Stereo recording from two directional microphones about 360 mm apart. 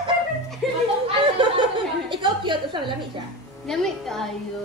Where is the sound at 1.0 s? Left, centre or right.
Centre.